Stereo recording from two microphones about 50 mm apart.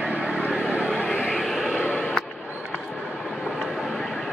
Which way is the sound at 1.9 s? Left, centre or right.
Left.